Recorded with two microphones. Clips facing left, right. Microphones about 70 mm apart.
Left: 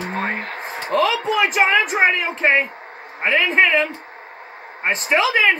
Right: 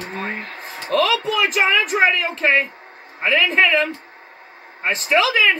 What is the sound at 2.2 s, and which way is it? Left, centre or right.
Speech, centre.